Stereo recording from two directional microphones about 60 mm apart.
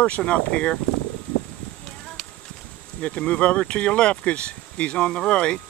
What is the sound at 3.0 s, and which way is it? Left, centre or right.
Speech, centre.